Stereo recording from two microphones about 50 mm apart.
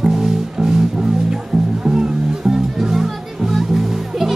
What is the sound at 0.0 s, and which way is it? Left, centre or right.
Music, centre.